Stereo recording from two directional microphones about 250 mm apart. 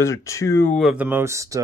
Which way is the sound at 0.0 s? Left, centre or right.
Centre.